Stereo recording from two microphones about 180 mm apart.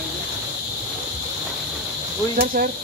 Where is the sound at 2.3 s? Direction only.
55° right (ahead or behind).